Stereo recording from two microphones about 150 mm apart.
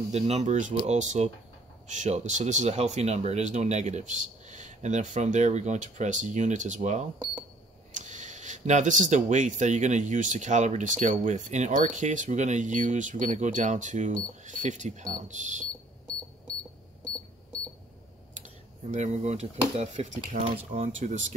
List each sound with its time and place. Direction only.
0.1 s speech: 50° right (ahead or behind)
18.9 s speech: 50° right (ahead or behind)